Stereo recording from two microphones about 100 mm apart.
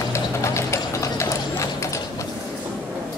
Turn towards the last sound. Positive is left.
turn(degrees=30)  # may be behind; listen again after turning